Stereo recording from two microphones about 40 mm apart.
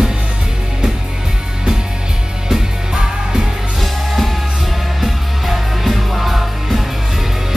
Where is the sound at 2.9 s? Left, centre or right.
Centre.